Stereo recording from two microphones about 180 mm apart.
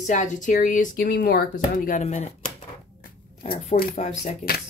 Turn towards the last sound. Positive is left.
turn(degrees=40)  # may be behind; listen again after turning